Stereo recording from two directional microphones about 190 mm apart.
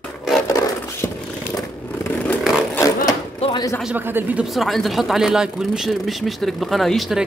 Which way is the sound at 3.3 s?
30° left (ahead or behind).